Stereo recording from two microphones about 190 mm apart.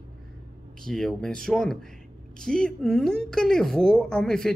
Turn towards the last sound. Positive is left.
turn(degrees=5)  # may be behind; listen again after turning